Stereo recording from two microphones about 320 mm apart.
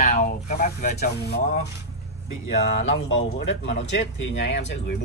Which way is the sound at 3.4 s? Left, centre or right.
Left.